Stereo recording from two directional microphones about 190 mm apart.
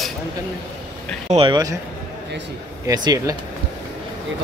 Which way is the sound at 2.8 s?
20° right (ahead or behind).